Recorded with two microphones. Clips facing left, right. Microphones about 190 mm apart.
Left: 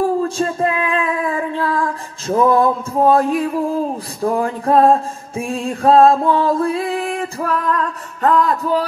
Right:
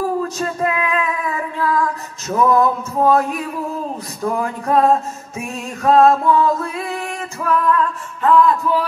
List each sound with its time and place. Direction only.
0.2 s female singing: 30° left (ahead or behind)